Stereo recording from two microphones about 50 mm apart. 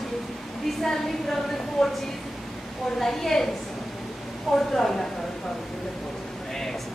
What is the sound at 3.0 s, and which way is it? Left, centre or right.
Speech, centre.